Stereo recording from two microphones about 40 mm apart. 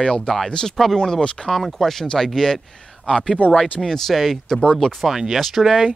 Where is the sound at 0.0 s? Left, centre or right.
Left.